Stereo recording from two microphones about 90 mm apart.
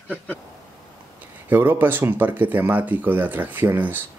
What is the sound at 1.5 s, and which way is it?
Speech, 20° right (ahead or behind).